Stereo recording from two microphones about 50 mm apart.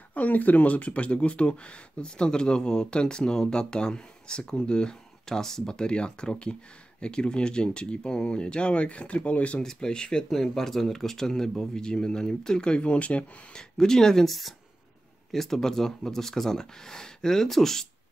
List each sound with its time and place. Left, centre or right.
0.1 s speech: left
9.6 s speech: centre
13.6 s speech: centre